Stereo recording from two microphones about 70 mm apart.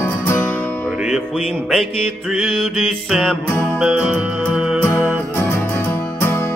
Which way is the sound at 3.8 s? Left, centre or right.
Centre.